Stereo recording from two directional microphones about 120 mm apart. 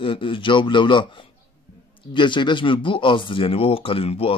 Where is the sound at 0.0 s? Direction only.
45° left (ahead or behind).